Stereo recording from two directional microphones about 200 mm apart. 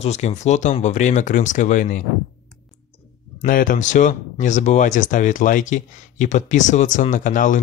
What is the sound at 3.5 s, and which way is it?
Speech, 40° left (ahead or behind).